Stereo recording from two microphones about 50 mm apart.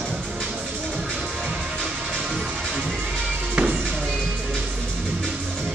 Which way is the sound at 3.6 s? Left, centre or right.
Right.